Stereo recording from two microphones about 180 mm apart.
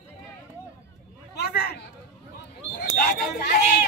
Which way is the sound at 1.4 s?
60° left (ahead or behind).